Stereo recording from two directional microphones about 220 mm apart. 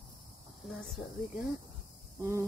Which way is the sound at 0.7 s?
Centre (ahead or behind).